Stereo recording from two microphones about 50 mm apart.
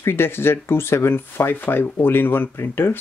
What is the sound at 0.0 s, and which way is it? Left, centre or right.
Speech, left.